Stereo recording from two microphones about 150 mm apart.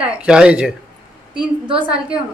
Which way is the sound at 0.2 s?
5° right (ahead or behind).